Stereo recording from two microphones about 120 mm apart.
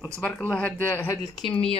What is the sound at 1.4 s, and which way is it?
Speech, 45° left (ahead or behind).